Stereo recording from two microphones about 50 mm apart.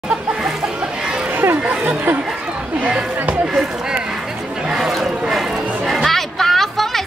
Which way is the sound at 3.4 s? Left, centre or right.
Centre.